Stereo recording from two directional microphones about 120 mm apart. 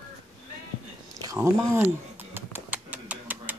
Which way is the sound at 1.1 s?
25° right (ahead or behind).